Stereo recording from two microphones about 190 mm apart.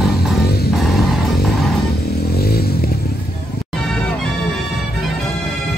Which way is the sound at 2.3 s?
55° left (ahead or behind).